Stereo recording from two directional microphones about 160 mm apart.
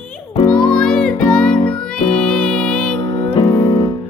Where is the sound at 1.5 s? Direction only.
30° left (ahead or behind).